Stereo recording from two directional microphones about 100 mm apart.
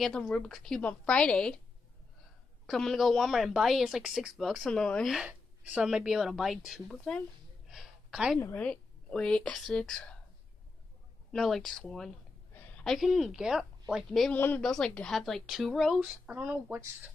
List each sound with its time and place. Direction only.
0.0 s a woman's voice: 10° left (ahead or behind)
2.6 s a woman's voice: centre (ahead or behind)
5.1 s a woman's voice: 10° right (ahead or behind)
7.6 s a sound: 5° right (ahead or behind)
8.5 s speech: 10° left (ahead or behind)
11.3 s a woman's voice: centre (ahead or behind)
14.3 s a woman's voice: 20° left (ahead or behind)
14.6 s a woman's voice: 5° left (ahead or behind)
16.0 s speech: 15° right (ahead or behind)